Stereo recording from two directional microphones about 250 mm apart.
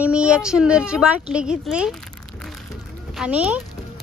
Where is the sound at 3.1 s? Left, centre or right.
Centre.